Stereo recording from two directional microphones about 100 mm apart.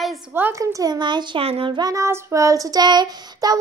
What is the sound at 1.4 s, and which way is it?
Child singing, 75° right (ahead or behind).